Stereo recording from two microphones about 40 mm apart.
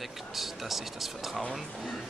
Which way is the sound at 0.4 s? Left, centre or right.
Centre.